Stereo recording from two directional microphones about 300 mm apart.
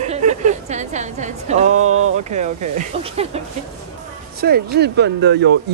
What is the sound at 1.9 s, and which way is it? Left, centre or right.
Speech, right.